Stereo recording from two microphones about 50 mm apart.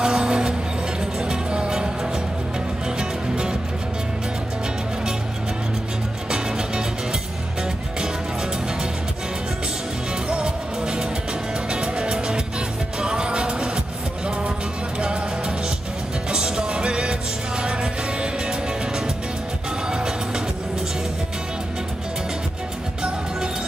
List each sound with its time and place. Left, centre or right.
0.0 s music: centre
3.0 s music: centre
6.3 s music: centre
10.3 s music: centre
19.9 s music: centre